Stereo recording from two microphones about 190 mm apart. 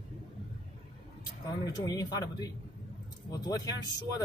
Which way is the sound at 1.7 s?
20° left (ahead or behind).